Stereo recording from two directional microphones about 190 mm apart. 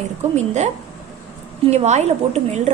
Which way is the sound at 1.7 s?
35° right (ahead or behind).